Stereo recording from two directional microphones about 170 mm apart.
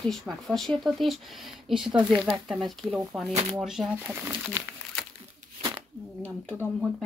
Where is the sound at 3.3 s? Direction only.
35° right (ahead or behind).